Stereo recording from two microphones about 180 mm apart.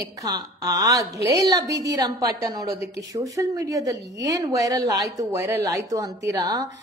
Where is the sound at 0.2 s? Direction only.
20° right (ahead or behind).